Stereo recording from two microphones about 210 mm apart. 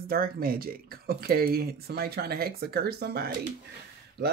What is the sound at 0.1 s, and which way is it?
Speech, 45° right (ahead or behind).